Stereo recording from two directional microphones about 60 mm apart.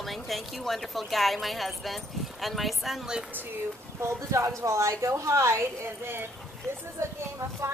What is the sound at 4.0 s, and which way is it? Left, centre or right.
Speech, right.